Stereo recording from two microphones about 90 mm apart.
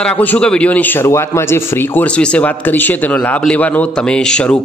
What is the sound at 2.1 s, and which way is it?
Speech, 10° left (ahead or behind).